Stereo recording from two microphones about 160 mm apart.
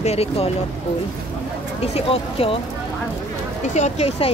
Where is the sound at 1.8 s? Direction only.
35° left (ahead or behind).